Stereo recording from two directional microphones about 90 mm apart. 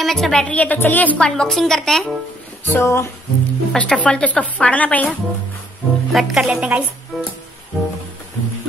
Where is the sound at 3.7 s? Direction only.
10° left (ahead or behind).